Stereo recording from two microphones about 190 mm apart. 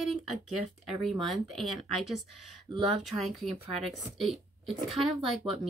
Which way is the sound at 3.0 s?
Centre (ahead or behind).